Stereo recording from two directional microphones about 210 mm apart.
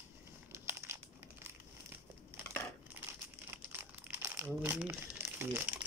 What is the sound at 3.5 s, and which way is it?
Crumpling, 10° right (ahead or behind).